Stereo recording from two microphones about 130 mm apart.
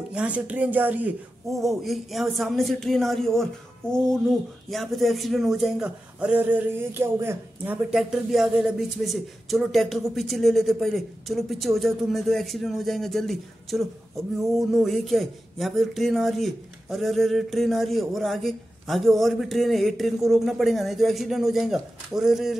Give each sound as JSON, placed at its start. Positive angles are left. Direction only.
{"t": 0.1, "sound": "speech", "side_deg": -10}
{"t": 1.5, "sound": "a man's voice", "side_deg": 0}
{"t": 7.9, "sound": "a man's voice", "side_deg": 0}